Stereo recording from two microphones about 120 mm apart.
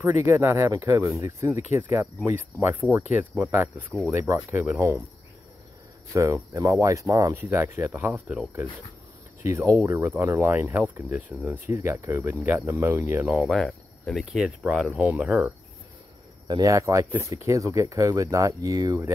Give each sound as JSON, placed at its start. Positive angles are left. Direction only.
{"t": 0.0, "sound": "speech", "side_deg": -15}
{"t": 1.8, "sound": "speech", "side_deg": -15}
{"t": 6.1, "sound": "speech", "side_deg": -20}
{"t": 8.1, "sound": "speech", "side_deg": -5}
{"t": 9.4, "sound": "speech", "side_deg": -25}
{"t": 13.3, "sound": "speech", "side_deg": 0}
{"t": 16.4, "sound": "speech", "side_deg": -30}